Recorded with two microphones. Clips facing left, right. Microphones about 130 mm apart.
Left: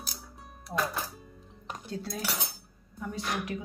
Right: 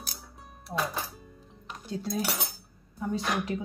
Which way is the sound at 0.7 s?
5° right (ahead or behind).